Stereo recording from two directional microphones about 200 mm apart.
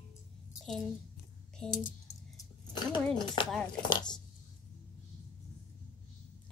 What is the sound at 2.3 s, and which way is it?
Dog, 20° left (ahead or behind).